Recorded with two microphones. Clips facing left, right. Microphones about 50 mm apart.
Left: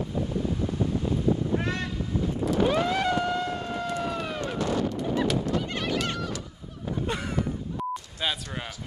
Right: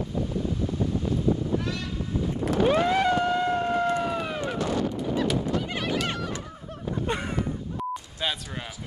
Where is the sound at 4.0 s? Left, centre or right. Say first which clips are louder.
Right 2 dB; centre.